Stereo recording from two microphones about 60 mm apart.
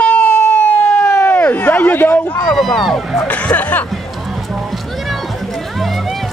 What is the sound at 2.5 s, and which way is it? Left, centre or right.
Speech, centre.